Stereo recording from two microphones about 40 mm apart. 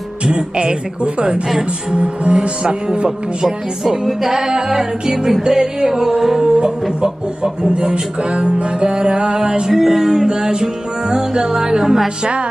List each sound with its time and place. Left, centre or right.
0.2 s speech: right
3.4 s music: centre
6.4 s speech: right
9.7 s music: centre